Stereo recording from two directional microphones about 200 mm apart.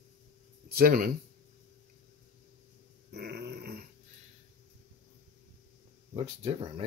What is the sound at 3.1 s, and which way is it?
Grunt, 55° right (ahead or behind).